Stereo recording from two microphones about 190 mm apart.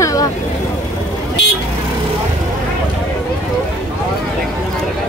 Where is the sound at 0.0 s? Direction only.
20° left (ahead or behind).